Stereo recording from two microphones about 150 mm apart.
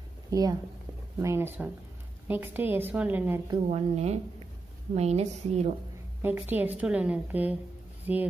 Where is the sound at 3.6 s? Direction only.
45° right (ahead or behind).